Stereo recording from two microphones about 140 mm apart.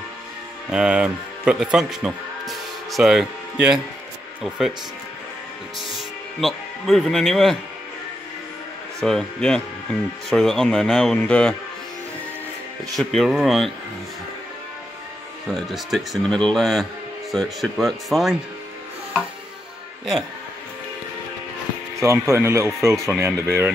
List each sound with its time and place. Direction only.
0.7 s speech: 5° right (ahead or behind)
5.8 s speech: centre (ahead or behind)
9.0 s speech: 5° left (ahead or behind)
12.9 s speech: centre (ahead or behind)
15.5 s speech: centre (ahead or behind)
22.0 s speech: 20° right (ahead or behind)